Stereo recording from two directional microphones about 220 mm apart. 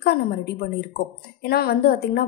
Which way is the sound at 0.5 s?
45° left (ahead or behind).